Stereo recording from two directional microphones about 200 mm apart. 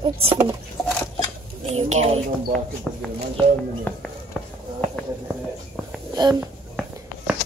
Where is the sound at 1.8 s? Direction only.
30° right (ahead or behind).